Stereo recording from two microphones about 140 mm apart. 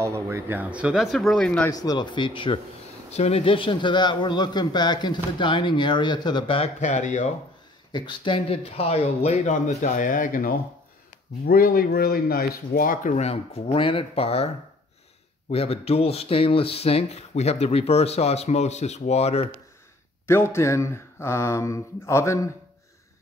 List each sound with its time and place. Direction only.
0.0 s speech: 20° right (ahead or behind); by 1.7 s 5° left (ahead or behind)
1.7 s a man's voice: 25° left (ahead or behind)
3.1 s a man's voice: 50° left (ahead or behind)
6.8 s speech: 55° left (ahead or behind)
7.9 s speech: 35° left (ahead or behind); by 10.5 s 75° left (ahead or behind)
11.4 s speech: 90° left; by 14.5 s 45° left (ahead or behind)
15.5 s speech: 45° left (ahead or behind)
20.2 s speech: 20° left (ahead or behind)